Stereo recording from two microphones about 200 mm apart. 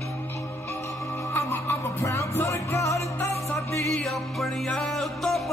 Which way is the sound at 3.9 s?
Centre (ahead or behind).